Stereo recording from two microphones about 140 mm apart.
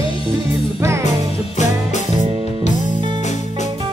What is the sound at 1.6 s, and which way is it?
Music, 55° left (ahead or behind).